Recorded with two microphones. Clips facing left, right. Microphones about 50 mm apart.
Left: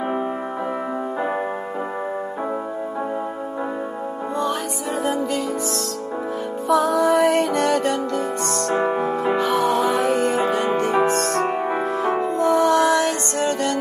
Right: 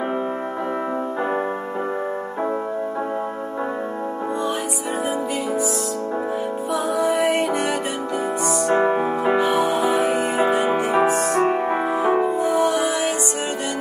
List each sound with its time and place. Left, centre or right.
6.7 s music: left
7.0 s music: centre